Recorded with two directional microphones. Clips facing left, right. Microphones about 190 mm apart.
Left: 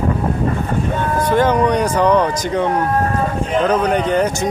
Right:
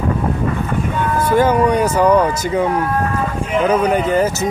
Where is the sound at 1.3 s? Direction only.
10° right (ahead or behind).